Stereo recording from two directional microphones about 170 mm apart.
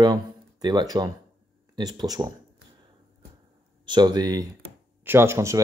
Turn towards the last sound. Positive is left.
turn(degrees=-15)  # may be behind; listen again after turning